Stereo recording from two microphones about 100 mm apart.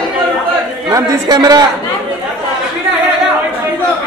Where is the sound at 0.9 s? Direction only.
40° right (ahead or behind).